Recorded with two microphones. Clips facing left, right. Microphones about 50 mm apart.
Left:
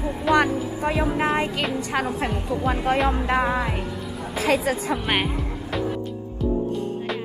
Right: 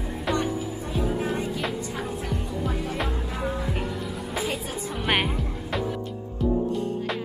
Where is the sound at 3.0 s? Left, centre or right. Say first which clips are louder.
Left 8 dB; left.